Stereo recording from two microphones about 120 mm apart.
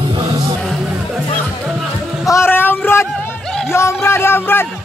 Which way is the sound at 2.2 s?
25° left (ahead or behind).